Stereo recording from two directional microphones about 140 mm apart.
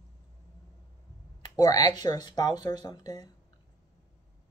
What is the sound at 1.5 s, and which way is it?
Speech, 25° left (ahead or behind).